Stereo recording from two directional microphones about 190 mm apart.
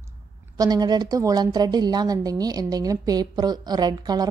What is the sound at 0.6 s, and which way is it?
A woman's voice, 20° right (ahead or behind).